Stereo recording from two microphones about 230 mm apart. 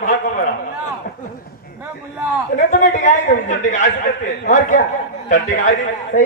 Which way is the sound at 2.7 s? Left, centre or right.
Left.